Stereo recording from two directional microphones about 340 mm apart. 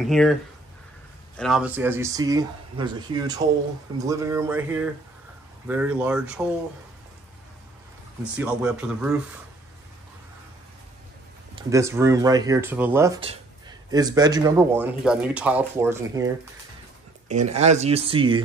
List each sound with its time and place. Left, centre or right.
0.0 s speech: centre
8.4 s speech: centre
11.5 s speech: centre
17.3 s speech: centre